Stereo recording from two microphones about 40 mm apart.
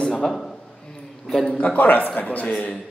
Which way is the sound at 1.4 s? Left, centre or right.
Left.